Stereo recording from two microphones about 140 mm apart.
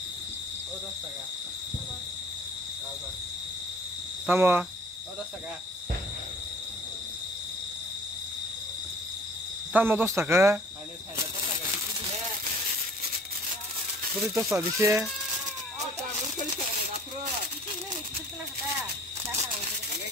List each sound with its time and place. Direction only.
4.3 s speech: 15° right (ahead or behind)
9.7 s speech: 15° right (ahead or behind)
14.2 s speech: 5° right (ahead or behind)
14.8 s speech: 20° right (ahead or behind)